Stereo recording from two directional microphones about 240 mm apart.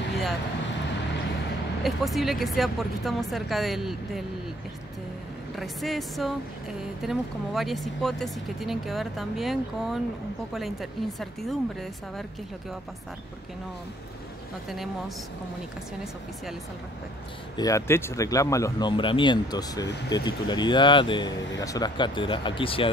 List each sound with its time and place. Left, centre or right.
1.8 s speech: centre
5.6 s speech: centre
14.7 s speech: centre
17.6 s speech: centre